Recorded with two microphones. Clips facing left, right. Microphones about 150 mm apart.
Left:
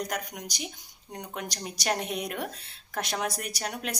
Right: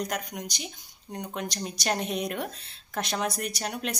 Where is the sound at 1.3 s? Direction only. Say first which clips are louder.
Right 2 dB; 10° left (ahead or behind).